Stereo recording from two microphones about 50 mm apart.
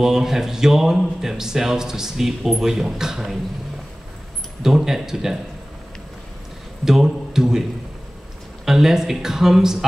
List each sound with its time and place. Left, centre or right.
0.0 s speech: centre
4.6 s speech: centre
6.8 s a man's voice: centre
8.6 s speech: centre